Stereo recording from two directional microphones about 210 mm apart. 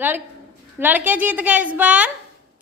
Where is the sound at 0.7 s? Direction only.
10° right (ahead or behind).